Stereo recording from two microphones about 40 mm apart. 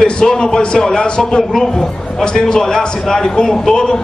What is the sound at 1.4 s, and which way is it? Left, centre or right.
A man's voice, centre.